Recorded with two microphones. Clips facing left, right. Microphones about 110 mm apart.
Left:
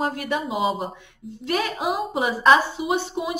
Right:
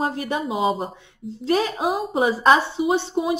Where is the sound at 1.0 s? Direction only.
30° right (ahead or behind).